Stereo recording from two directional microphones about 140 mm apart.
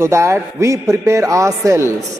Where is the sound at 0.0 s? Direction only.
20° right (ahead or behind).